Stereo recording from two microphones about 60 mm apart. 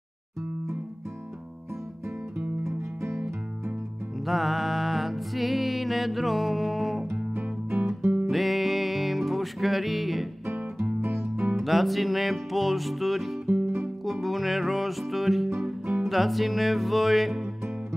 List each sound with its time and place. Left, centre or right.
2.6 s music: right
4.3 s music: centre
8.3 s music: centre
10.4 s guitar: right
11.0 s music: right
11.5 s music: centre